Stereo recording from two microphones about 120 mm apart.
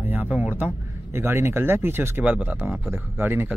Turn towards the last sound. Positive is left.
turn(degrees=-15)  # may be behind; listen again after turning